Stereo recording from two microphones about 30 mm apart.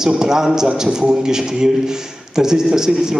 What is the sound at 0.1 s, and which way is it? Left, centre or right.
A man's voice, centre.